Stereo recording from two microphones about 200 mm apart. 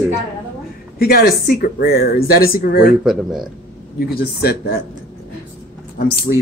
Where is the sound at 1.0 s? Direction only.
50° left (ahead or behind).